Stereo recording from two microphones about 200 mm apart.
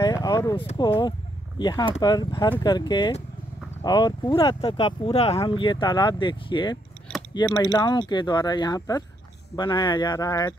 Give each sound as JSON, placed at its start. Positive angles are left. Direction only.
{"t": 0.0, "sound": "speech", "side_deg": 20}